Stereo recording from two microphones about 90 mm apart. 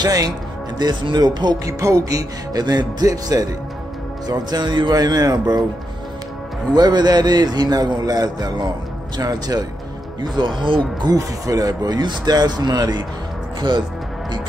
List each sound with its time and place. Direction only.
0.0 s a man's voice: 45° right (ahead or behind)
0.7 s a man's voice: 55° right (ahead or behind)
1.7 s a man's voice: 35° right (ahead or behind)
6.7 s a man's voice: 50° right (ahead or behind)
10.2 s speech: 55° right (ahead or behind)
11.1 s a man's voice: 40° right (ahead or behind); by 13.8 s 55° right (ahead or behind)